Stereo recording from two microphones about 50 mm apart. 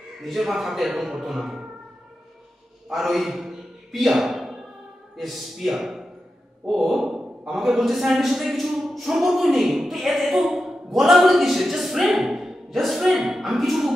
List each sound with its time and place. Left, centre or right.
0.2 s a man's voice: centre
2.9 s a sound: centre
5.1 s a man's voice: centre